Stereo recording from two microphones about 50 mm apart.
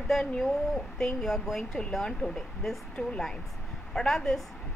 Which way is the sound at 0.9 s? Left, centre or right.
Centre.